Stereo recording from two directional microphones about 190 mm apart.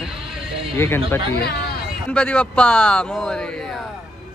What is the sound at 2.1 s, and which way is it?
A man's voice, 5° left (ahead or behind).